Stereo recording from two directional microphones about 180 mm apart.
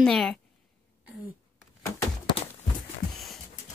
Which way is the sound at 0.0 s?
5° left (ahead or behind).